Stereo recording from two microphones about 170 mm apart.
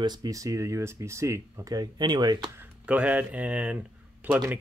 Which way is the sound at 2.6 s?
10° right (ahead or behind).